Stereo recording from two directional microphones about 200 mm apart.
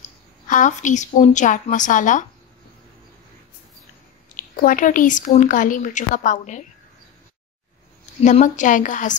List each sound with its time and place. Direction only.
0.5 s a woman's voice: 40° left (ahead or behind)
4.4 s a woman's voice: 40° left (ahead or behind)
8.2 s a woman's voice: 35° left (ahead or behind)